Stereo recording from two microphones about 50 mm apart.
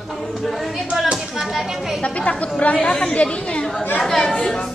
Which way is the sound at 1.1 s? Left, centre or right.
Centre.